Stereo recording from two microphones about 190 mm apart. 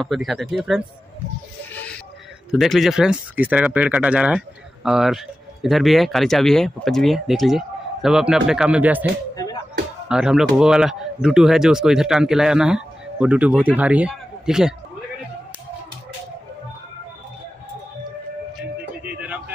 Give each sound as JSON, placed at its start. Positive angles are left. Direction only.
{"t": 0.0, "sound": "speech", "side_deg": 0}
{"t": 2.5, "sound": "speech", "side_deg": 0}
{"t": 9.3, "sound": "music", "side_deg": 20}
{"t": 10.0, "sound": "speech", "side_deg": -5}
{"t": 19.0, "sound": "a sound", "side_deg": -10}